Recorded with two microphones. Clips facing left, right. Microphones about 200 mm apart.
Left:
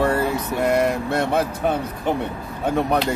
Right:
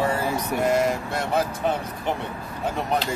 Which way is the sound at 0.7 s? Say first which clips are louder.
Left 4 dB; 60° left (ahead or behind).